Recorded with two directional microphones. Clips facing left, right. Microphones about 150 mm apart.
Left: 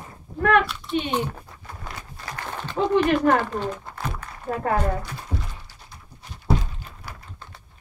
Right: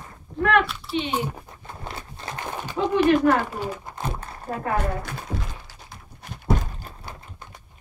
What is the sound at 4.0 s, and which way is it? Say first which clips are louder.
Crumpling: right 3 dB; 25° right (ahead or behind).